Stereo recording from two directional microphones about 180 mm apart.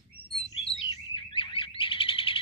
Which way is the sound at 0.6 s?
30° left (ahead or behind).